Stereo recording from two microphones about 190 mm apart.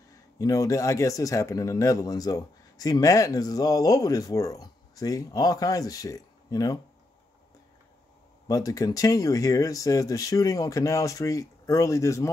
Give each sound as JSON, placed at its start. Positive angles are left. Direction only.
{"t": 0.4, "sound": "speech", "side_deg": 15}
{"t": 8.5, "sound": "speech", "side_deg": 20}